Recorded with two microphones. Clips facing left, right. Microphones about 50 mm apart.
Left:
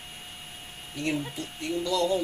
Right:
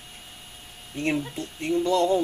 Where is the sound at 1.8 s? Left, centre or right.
Right.